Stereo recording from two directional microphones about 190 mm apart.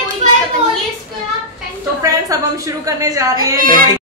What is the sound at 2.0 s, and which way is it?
A woman's voice, 15° right (ahead or behind).